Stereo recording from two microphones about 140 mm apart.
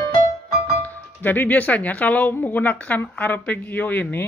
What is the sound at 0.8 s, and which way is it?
Speech, 15° left (ahead or behind).